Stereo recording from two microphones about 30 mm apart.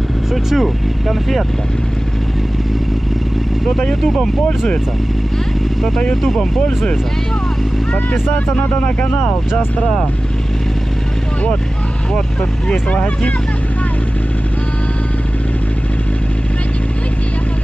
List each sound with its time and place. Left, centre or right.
0.3 s speech: centre
6.2 s speech: centre
8.8 s speech: left
12.9 s speech: left